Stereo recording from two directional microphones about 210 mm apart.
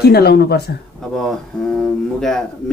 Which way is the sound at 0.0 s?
50° left (ahead or behind).